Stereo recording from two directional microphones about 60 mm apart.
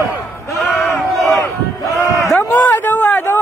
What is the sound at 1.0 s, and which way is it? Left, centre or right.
Battle cry, centre.